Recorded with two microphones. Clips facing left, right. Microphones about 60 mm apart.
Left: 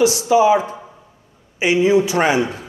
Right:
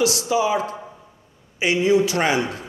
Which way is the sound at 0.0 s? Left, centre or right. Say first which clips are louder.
Left 6 dB; left.